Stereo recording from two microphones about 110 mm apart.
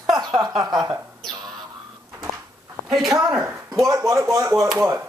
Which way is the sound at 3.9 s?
25° right (ahead or behind).